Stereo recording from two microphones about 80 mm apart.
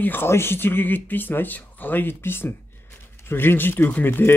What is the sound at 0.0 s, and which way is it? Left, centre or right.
Speech, left.